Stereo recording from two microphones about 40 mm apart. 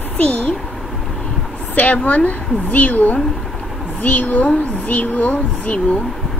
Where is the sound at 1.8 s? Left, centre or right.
Left.